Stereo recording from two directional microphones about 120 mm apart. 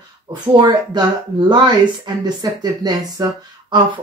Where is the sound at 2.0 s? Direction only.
35° right (ahead or behind).